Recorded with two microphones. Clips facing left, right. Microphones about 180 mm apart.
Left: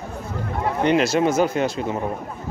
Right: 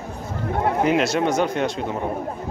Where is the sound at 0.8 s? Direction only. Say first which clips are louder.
Left 3 dB; centre (ahead or behind).